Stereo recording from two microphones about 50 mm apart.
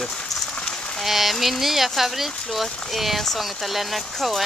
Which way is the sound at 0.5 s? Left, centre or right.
Centre.